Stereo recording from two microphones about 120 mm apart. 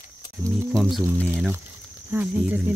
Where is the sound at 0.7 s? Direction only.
5° left (ahead or behind).